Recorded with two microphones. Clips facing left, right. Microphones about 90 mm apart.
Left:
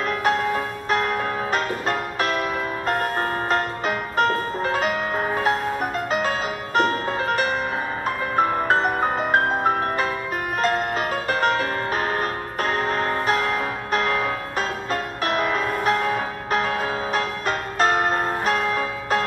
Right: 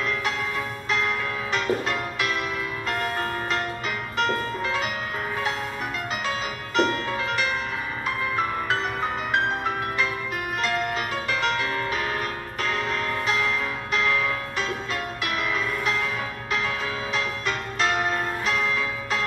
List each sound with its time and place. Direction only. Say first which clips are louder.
0.0 s music: left 6 dB; 45° left (ahead or behind)